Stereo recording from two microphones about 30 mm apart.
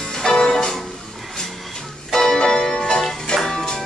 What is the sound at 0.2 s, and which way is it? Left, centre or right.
Music, left.